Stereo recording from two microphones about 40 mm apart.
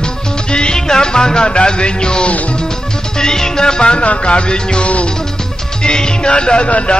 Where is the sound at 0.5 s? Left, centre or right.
Left.